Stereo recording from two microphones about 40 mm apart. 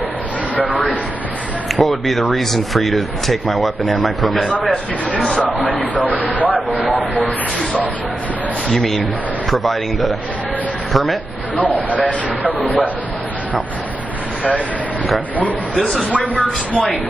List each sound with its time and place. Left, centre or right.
0.6 s speech: left
1.8 s speech: centre
5.9 s speech: right
8.7 s speech: centre
11.9 s speech: left
12.4 s speech: right
15.7 s speech: left
16.2 s speech: left